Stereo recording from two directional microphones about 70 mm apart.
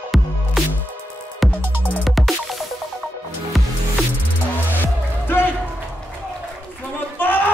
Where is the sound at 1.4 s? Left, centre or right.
Centre.